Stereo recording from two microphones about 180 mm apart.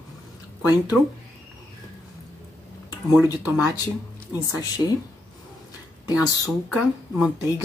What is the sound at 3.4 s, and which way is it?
Speech, 5° right (ahead or behind).